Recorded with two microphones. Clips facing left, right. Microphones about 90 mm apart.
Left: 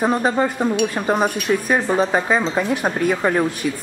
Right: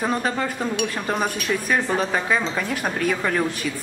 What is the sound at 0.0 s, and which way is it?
A woman's voice, 25° left (ahead or behind).